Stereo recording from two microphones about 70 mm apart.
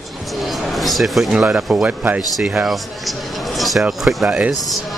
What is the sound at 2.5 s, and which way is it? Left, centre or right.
Speech, centre.